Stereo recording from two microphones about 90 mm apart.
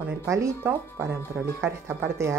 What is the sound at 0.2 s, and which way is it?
Speech, 35° right (ahead or behind).